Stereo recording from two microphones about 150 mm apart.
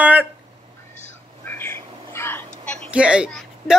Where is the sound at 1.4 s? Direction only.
15° left (ahead or behind).